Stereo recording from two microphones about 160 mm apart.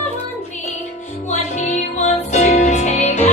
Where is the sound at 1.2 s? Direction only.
45° left (ahead or behind).